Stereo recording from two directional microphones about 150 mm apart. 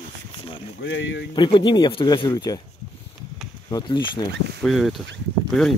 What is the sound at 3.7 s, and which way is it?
Speech, 30° left (ahead or behind).